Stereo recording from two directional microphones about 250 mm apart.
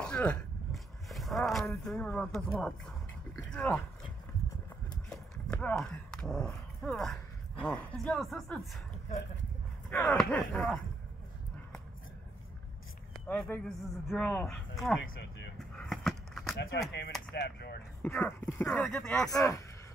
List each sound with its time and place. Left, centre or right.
0.0 s a sound: centre
1.9 s speech: centre
5.1 s a sound: centre
7.6 s speech: centre
9.8 s speech: centre
13.3 s speech: centre
15.0 s speech: left
15.9 s a sound: centre
17.3 s speech: left
18.0 s speech: centre
19.3 s speech: centre